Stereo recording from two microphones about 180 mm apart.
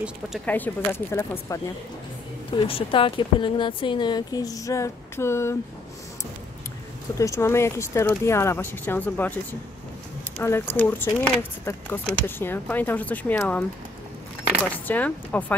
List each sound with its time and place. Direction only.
0.5 s speech: 10° left (ahead or behind)
2.5 s speech: 30° left (ahead or behind); by 5.6 s 15° left (ahead or behind)
7.2 s speech: 15° left (ahead or behind)
14.7 s speech: 10° left (ahead or behind)